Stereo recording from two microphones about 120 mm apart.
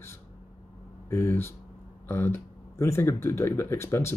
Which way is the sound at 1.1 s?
20° left (ahead or behind).